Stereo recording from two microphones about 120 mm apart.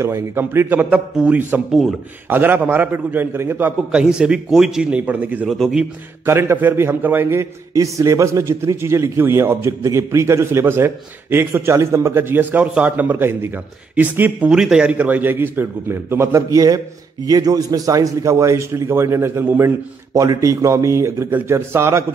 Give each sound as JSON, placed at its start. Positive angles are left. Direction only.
{"t": 0.0, "sound": "a man's voice", "side_deg": -20}
{"t": 6.2, "sound": "a man's voice", "side_deg": -20}